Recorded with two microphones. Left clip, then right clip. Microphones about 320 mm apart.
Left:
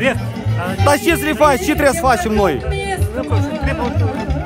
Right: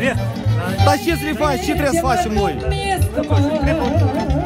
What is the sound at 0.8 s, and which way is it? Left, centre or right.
Speech, centre.